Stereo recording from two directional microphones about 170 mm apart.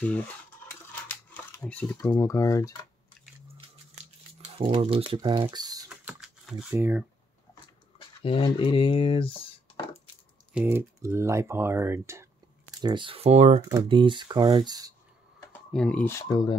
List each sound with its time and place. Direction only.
0.0 s stir: 10° left (ahead or behind)
1.3 s a sound: 10° left (ahead or behind)
2.0 s speech: 20° left (ahead or behind)
3.6 s a sound: 35° right (ahead or behind)
5.9 s typing: 5° right (ahead or behind)
6.7 s speech: 10° right (ahead or behind)
8.2 s speech: 30° left (ahead or behind)
10.5 s speech: 10° right (ahead or behind)
12.8 s speech: 30° right (ahead or behind)
13.6 s speech: 25° right (ahead or behind)
15.5 s speech: 5° left (ahead or behind); by 16.5 s 25° left (ahead or behind)